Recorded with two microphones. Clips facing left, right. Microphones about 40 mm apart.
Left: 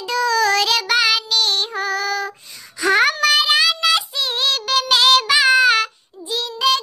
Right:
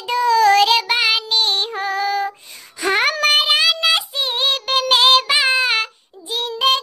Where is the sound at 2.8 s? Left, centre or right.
Right.